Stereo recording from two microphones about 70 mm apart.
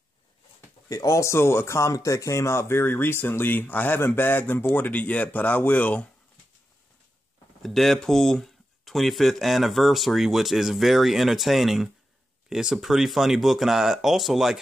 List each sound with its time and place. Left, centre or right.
0.8 s speech: left
7.6 s speech: centre